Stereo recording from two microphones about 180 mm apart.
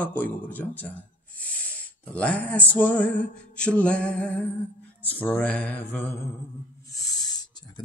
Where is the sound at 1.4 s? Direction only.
5° left (ahead or behind).